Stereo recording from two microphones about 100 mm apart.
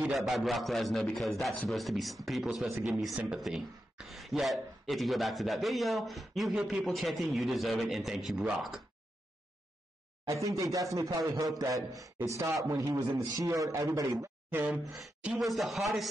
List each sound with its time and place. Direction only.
0.1 s speech: centre (ahead or behind)
10.2 s speech: 35° right (ahead or behind)
12.2 s chopping: 30° right (ahead or behind)
12.6 s speech: 35° right (ahead or behind)
14.5 s a sound: 15° right (ahead or behind)
14.8 s speech: centre (ahead or behind)